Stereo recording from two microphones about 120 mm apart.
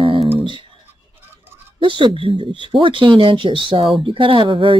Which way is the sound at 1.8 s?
45° right (ahead or behind).